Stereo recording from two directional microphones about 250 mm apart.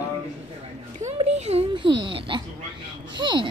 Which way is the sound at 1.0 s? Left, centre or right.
Right.